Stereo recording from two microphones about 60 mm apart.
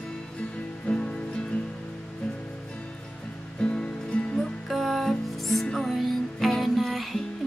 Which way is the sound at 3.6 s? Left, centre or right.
Centre.